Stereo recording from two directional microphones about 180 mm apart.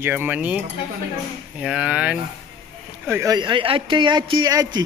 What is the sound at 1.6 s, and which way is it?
A man's voice, 5° right (ahead or behind).